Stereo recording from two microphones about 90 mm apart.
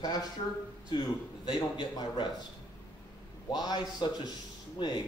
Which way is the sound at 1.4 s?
50° left (ahead or behind).